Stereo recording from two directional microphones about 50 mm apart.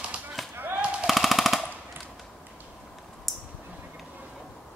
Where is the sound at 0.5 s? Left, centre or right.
Right.